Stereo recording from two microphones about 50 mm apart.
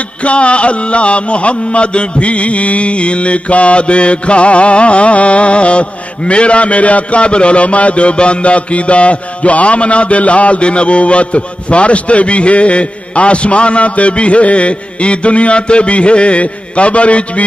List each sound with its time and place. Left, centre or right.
0.2 s mantra: left